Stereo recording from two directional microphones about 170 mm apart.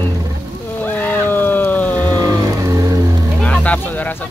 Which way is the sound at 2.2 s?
20° right (ahead or behind).